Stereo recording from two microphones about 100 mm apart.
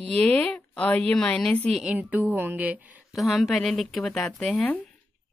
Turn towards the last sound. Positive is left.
turn(degrees=10)  # may be behind; listen again after turning